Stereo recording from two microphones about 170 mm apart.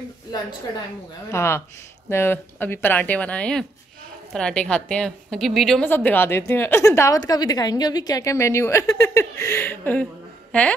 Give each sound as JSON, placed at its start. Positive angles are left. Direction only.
{"t": 1.3, "sound": "a woman's voice", "side_deg": 15}
{"t": 5.9, "sound": "a woman's voice", "side_deg": 10}